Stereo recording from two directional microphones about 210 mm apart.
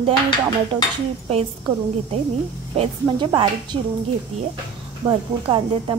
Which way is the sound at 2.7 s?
30° right (ahead or behind).